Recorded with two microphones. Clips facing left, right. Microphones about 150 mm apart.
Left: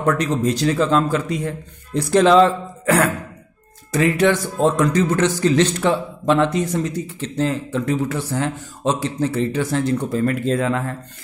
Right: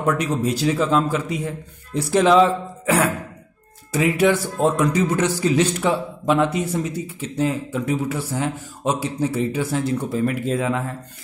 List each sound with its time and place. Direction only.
0.0 s a man's voice: 10° right (ahead or behind)